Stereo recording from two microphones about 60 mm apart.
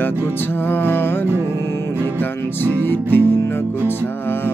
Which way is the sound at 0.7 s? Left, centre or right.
Left.